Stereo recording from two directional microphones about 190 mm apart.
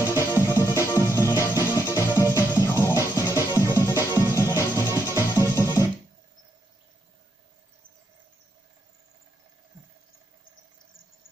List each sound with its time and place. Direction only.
0.0 s music: 15° left (ahead or behind)